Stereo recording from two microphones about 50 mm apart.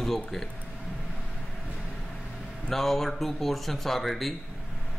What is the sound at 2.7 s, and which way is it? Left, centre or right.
Speech, centre.